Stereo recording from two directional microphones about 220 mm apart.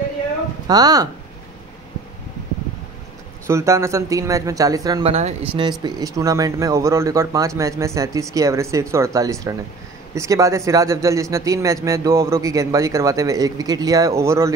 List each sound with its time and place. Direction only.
0.7 s a man's voice: 15° right (ahead or behind)
3.4 s a man's voice: 15° right (ahead or behind)